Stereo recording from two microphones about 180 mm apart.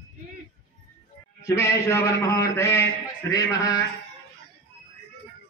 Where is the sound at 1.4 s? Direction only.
15° left (ahead or behind).